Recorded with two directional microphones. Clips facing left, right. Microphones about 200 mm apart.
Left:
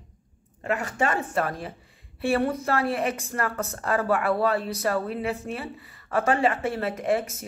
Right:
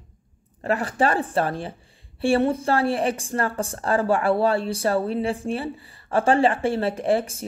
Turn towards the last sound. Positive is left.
turn(degrees=-30)  # may be behind; listen again after turning